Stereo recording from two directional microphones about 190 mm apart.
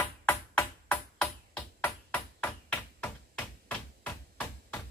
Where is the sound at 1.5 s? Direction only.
10° left (ahead or behind).